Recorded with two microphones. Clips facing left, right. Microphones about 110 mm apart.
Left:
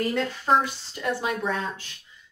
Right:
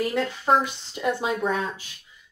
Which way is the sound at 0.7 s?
20° right (ahead or behind).